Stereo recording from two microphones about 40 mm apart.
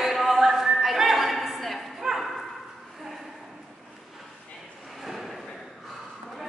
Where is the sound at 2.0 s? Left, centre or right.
Centre.